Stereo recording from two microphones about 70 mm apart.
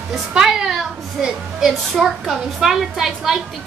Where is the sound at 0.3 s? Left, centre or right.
Centre.